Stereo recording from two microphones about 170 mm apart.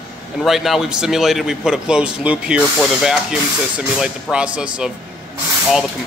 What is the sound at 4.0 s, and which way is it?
A man's voice, 5° right (ahead or behind).